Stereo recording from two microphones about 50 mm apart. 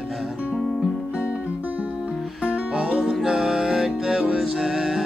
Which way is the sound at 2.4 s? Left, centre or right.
Centre.